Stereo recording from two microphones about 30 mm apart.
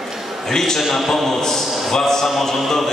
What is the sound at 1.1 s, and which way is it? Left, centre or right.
A man's voice, centre.